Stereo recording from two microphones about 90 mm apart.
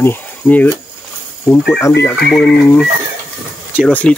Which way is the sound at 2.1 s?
Centre (ahead or behind).